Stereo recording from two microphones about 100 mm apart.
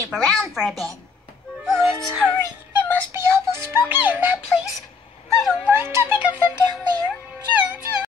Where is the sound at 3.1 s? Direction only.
25° right (ahead or behind).